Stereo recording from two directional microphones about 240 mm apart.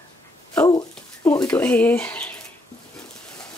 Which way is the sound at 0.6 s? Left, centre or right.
Centre.